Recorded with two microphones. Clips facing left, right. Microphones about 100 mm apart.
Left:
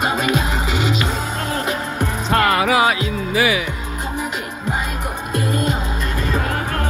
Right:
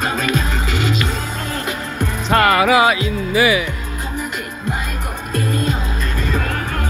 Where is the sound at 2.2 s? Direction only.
80° right.